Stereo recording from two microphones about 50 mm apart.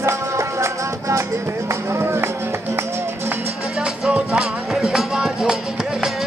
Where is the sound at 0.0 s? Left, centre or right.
Right.